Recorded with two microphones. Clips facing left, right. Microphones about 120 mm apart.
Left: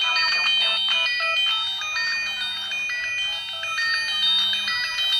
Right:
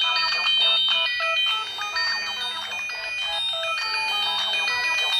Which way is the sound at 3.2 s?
60° right (ahead or behind).